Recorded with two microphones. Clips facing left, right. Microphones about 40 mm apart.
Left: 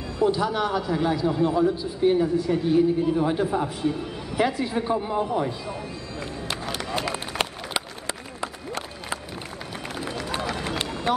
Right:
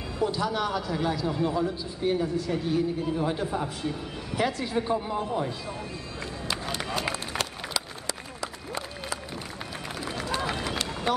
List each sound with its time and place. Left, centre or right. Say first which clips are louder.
0.2 s a man's voice: left 5 dB; centre
7.3 s run: left 3 dB; left